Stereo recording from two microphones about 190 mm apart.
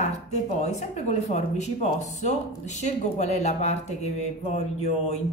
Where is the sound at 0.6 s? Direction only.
40° left (ahead or behind).